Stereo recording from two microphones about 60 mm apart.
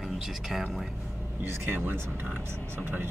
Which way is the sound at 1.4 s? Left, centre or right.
Right.